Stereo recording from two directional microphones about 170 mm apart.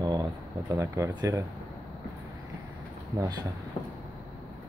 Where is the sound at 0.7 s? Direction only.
20° right (ahead or behind).